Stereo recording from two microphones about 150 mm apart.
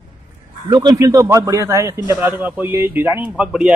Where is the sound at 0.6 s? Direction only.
25° right (ahead or behind).